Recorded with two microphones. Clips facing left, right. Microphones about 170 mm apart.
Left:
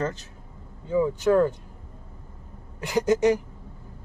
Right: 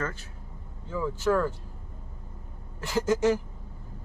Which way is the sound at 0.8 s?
20° left (ahead or behind).